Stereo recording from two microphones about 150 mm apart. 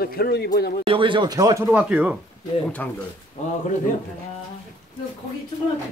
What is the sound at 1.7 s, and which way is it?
Speech, 10° right (ahead or behind).